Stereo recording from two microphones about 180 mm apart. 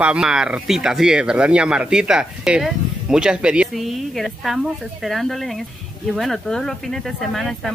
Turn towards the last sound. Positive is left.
turn(degrees=0)  # may be behind; listen again after turning